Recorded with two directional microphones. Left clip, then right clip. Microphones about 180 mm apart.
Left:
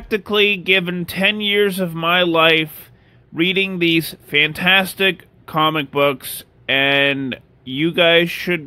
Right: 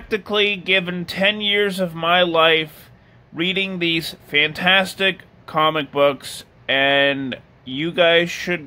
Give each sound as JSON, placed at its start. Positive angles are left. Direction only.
{"t": 0.1, "sound": "speech", "side_deg": 30}